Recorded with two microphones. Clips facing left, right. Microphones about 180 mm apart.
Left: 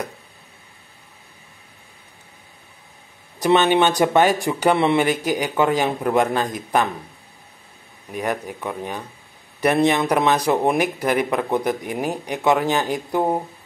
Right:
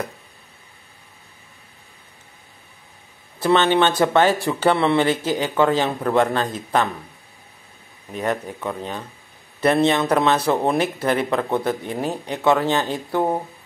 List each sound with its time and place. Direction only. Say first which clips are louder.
3.3 s speech: left 1 dB; 15° left (ahead or behind)
8.1 s speech: right 1 dB; 10° left (ahead or behind)